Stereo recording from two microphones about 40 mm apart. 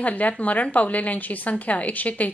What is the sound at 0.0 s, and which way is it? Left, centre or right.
A woman's voice, left.